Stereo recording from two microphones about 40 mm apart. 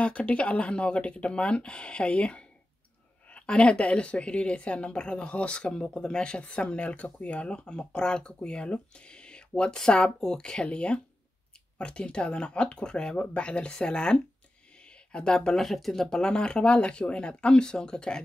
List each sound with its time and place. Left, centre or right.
0.0 s speech: left